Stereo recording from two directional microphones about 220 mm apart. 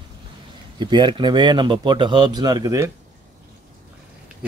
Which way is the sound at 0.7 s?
20° right (ahead or behind).